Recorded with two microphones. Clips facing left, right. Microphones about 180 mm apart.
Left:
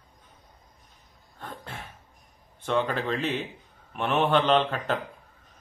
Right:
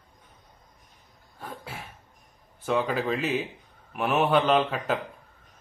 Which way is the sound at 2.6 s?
5° right (ahead or behind).